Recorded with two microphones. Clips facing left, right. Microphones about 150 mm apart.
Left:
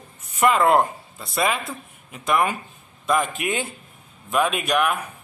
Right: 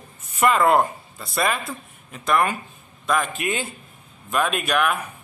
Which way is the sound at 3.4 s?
20° left (ahead or behind).